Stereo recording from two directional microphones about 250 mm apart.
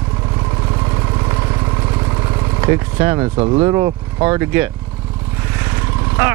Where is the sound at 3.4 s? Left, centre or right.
Right.